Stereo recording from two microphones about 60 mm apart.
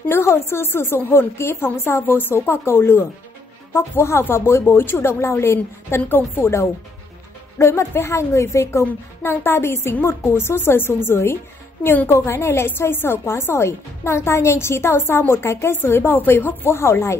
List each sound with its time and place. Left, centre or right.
0.1 s a woman's voice: left
7.5 s a woman's voice: left